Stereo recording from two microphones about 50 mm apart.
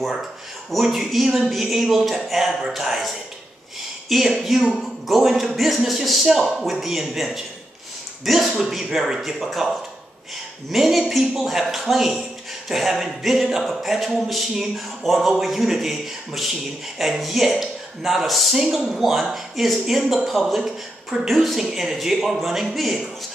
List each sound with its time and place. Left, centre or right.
0.1 s speech: centre